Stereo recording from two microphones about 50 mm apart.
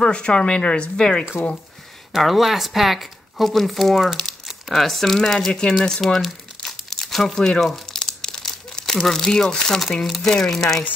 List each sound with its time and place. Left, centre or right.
0.0 s speech: centre
2.1 s speech: centre
5.8 s crumpling: centre
7.3 s speech: centre
7.6 s crumpling: centre
10.0 s speech: centre
10.3 s speech: centre